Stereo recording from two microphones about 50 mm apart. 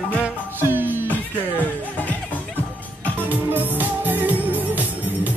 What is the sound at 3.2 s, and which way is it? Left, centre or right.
Music, right.